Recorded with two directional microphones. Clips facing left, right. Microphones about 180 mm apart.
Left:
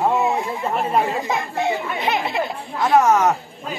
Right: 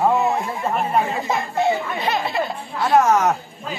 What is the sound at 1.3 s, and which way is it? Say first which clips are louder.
Speech: right 2 dB; 20° left (ahead or behind).